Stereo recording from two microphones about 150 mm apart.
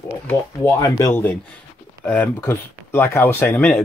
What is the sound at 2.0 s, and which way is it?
Speech, 10° left (ahead or behind).